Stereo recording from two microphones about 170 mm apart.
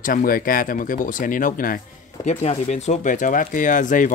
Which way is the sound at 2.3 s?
40° left (ahead or behind).